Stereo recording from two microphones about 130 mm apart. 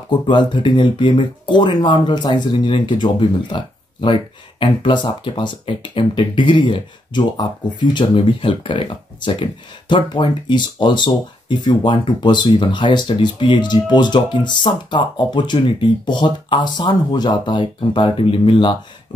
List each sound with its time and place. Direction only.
0.3 s speech: 35° left (ahead or behind)